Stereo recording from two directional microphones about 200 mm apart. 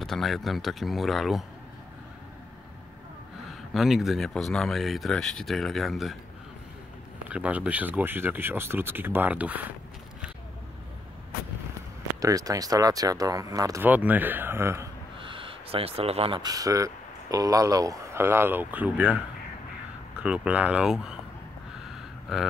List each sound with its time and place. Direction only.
0.0 s speech: centre (ahead or behind)
3.7 s speech: centre (ahead or behind)
7.2 s speech: 5° right (ahead or behind)
12.2 s speech: 15° right (ahead or behind)
15.1 s speech: 25° right (ahead or behind); by 19.1 s 5° right (ahead or behind)
20.2 s speech: 5° right (ahead or behind)
22.3 s speech: centre (ahead or behind)